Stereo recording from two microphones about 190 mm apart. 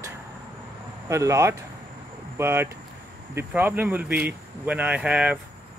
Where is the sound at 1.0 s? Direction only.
15° right (ahead or behind).